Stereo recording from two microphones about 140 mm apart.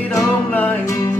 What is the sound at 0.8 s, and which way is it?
Music, 25° left (ahead or behind).